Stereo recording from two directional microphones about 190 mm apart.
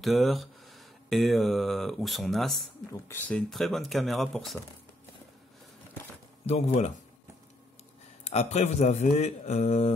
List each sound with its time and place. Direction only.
0.0 s speech: centre (ahead or behind)
2.9 s speech: 10° left (ahead or behind)
6.4 s a man's voice: 30° left (ahead or behind)
8.2 s a man's voice: 35° left (ahead or behind)